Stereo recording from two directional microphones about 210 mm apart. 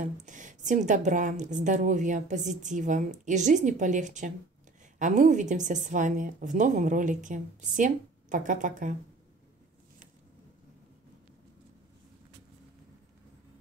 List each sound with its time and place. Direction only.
0.0 s a woman's voice: 35° right (ahead or behind)